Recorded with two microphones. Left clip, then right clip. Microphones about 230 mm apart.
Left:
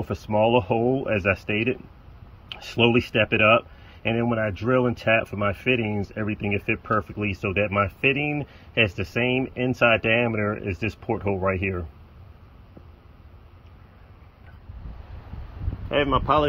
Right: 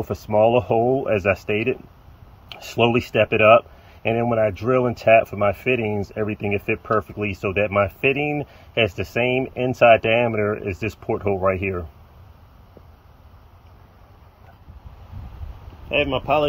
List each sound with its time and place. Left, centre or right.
0.0 s speech: right
15.9 s speech: left